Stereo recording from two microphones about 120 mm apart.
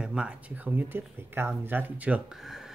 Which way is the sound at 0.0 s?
10° right (ahead or behind).